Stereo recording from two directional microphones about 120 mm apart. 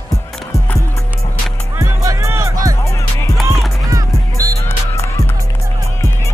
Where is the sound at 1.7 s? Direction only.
25° right (ahead or behind).